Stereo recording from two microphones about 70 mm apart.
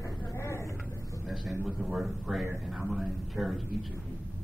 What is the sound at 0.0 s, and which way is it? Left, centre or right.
Vehicle, left.